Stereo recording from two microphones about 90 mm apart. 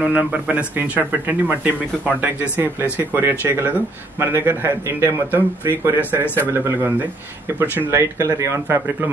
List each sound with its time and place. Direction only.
0.0 s a man's voice: 15° right (ahead or behind)
6.2 s a man's voice: 25° left (ahead or behind)
6.5 s a man's voice: 30° right (ahead or behind)